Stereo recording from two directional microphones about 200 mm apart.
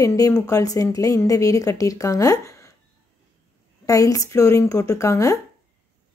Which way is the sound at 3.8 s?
15° left (ahead or behind).